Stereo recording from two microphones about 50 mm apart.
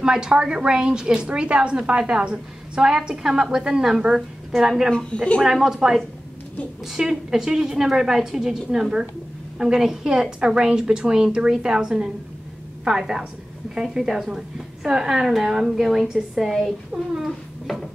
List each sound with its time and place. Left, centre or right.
0.0 s a woman's voice: centre
4.9 s speech: centre
5.4 s a woman's voice: centre